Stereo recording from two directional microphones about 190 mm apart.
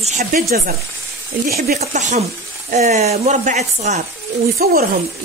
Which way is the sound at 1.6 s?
35° right (ahead or behind).